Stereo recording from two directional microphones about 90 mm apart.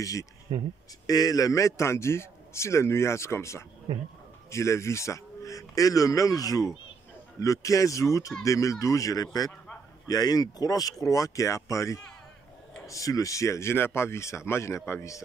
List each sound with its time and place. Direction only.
0.0 s a man's voice: 40° left (ahead or behind)
0.5 s speech: 55° right (ahead or behind)
1.0 s a man's voice: 45° left (ahead or behind)
3.9 s speech: 55° right (ahead or behind)
4.5 s a man's voice: 35° left (ahead or behind)